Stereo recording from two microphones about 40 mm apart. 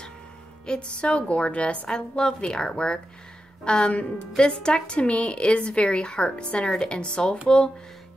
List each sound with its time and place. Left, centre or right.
0.7 s a woman's voice: left